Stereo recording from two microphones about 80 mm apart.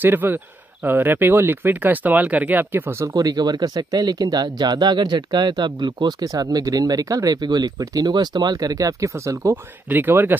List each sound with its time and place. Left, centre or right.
0.0 s speech: right
3.2 s speech: right
6.2 s speech: right
9.8 s speech: right